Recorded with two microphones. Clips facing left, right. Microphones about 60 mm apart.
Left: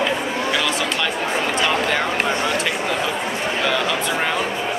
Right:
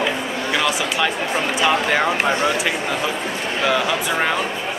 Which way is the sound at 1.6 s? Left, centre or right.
Centre.